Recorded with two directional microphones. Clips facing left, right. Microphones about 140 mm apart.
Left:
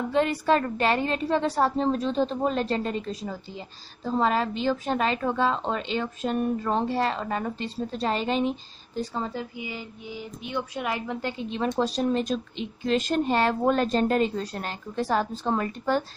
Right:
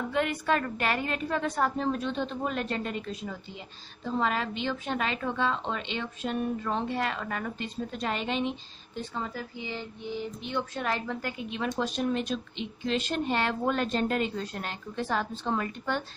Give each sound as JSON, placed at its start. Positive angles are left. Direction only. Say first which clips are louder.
{"t": 0.1, "sound": "a woman's voice", "louder": "left 6 dB", "side_deg": 30}
{"t": 9.6, "sound": "speech", "louder": "left 1 dB", "side_deg": 5}
{"t": 11.1, "sound": "a woman's voice", "louder": "left 4 dB", "side_deg": 30}